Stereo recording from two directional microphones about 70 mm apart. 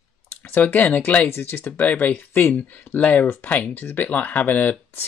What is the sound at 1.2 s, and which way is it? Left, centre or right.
Speech, left.